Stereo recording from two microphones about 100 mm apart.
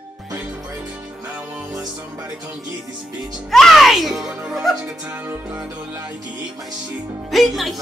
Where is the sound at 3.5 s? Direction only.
Centre (ahead or behind).